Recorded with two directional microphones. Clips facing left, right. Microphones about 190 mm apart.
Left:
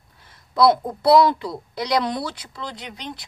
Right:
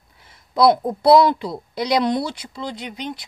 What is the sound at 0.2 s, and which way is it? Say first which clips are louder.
Speech: right 1 dB; 15° right (ahead or behind).